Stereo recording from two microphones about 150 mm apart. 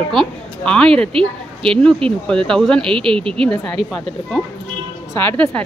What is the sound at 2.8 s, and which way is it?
Speech, 35° right (ahead or behind).